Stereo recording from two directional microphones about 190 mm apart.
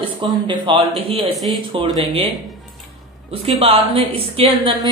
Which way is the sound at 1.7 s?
30° right (ahead or behind).